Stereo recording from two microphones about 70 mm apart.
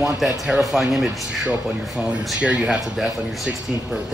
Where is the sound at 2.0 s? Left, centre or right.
Centre.